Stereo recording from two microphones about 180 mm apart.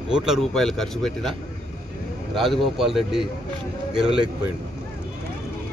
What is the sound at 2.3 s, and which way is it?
Speech, centre (ahead or behind).